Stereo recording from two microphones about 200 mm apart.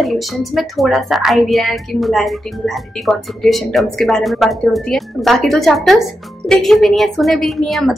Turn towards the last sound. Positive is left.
turn(degrees=0)  # may be behind; listen again after turning